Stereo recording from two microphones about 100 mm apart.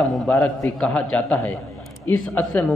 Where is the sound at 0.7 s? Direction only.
5° left (ahead or behind).